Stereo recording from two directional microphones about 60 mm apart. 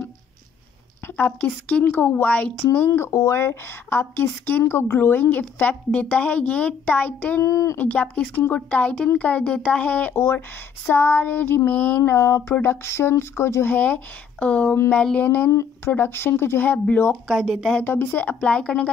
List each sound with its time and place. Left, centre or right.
1.1 s speech: left
3.1 s a woman's voice: left
5.6 s speech: left
7.4 s speech: left
7.7 s speech: left
10.1 s a woman's voice: left
12.0 s speech: left
13.7 s speech: left
15.2 s speech: left
16.1 s a woman's voice: left
17.3 s speech: centre
17.8 s speech: left